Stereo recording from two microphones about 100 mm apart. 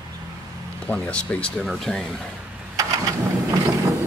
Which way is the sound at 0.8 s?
15° left (ahead or behind).